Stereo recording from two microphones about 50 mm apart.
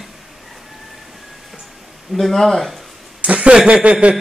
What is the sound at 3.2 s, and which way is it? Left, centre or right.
Speech, right.